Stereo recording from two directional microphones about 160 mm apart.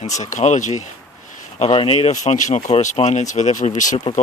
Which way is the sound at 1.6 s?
35° left (ahead or behind).